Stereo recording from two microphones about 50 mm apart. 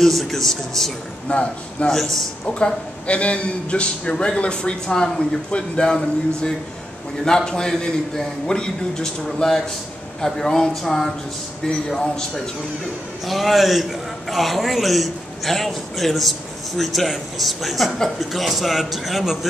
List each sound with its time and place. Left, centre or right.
0.0 s a man's voice: centre
1.3 s a man's voice: left
13.3 s a man's voice: centre